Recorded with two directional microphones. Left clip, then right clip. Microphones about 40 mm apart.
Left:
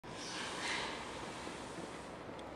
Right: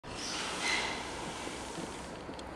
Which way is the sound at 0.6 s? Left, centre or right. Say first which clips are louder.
Right 7 dB; right.